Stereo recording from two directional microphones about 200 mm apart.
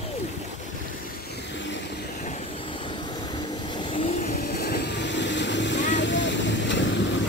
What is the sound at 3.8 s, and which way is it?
Vehicle, 25° left (ahead or behind).